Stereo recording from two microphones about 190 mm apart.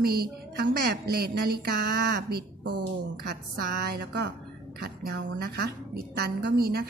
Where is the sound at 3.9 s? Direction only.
65° right (ahead or behind).